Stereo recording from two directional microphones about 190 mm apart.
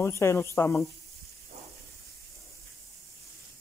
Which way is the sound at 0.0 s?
15° left (ahead or behind).